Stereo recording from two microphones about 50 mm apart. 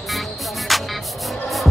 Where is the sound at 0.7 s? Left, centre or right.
Centre.